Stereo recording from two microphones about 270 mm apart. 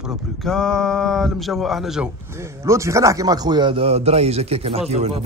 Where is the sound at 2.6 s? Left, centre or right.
Centre.